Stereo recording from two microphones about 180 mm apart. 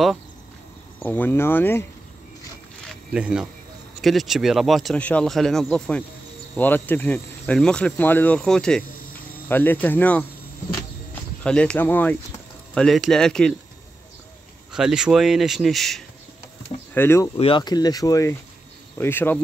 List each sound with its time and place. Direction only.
0.9 s speech: 10° left (ahead or behind)
2.9 s a sound: 5° right (ahead or behind)
4.0 s speech: centre (ahead or behind)
11.4 s speech: 5° left (ahead or behind)
14.7 s speech: 5° right (ahead or behind)
16.9 s speech: 15° left (ahead or behind)
17.4 s speech: 25° left (ahead or behind); by 19.4 s 10° left (ahead or behind)